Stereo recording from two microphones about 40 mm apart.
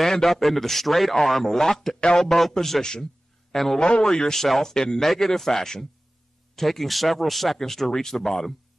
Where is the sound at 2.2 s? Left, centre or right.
Centre.